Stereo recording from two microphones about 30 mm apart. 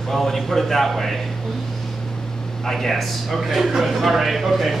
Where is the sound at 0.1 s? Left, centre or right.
Centre.